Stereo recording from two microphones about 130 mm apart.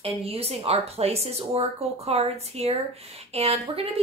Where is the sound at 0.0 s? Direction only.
50° right (ahead or behind).